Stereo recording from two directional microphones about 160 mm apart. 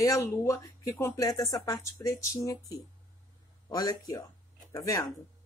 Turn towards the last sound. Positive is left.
turn(degrees=20)  # may be behind; listen again after turning